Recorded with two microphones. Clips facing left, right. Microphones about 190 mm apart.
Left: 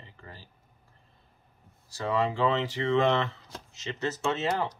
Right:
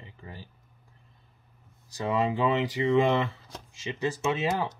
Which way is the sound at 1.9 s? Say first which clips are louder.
Right 1 dB; 15° right (ahead or behind).